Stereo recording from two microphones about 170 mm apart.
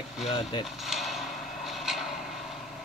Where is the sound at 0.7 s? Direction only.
Centre (ahead or behind).